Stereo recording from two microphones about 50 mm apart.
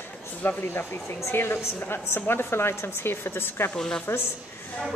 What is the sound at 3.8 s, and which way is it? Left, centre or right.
Speech, centre.